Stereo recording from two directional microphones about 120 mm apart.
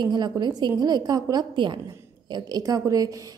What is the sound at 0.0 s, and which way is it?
A woman's voice, 35° right (ahead or behind).